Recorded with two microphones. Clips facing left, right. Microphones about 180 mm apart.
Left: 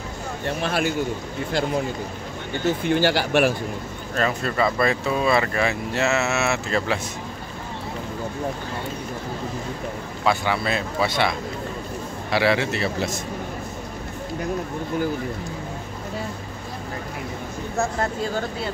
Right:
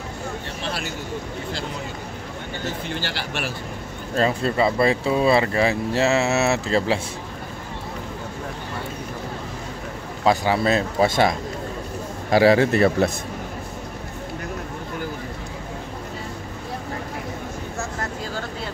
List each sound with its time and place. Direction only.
0.6 s a man's voice: 50° left (ahead or behind)
2.9 s a man's voice: 50° left (ahead or behind)
4.1 s speech: 30° right (ahead or behind)
10.2 s a man's voice: 35° right (ahead or behind)